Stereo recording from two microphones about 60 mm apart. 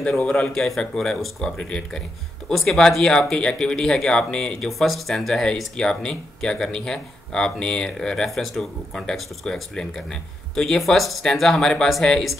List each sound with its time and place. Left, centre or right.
0.2 s speech: centre
0.5 s speech: centre